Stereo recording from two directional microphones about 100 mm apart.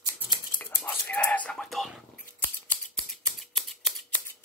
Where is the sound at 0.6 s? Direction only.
15° left (ahead or behind).